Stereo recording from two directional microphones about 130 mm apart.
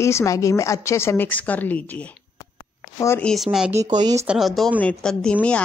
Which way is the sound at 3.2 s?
Centre (ahead or behind).